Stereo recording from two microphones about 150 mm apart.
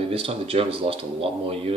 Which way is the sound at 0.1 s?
40° right (ahead or behind).